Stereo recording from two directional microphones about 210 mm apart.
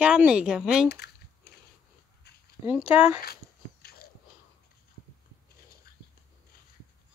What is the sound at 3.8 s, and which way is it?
Wheeze, 45° left (ahead or behind).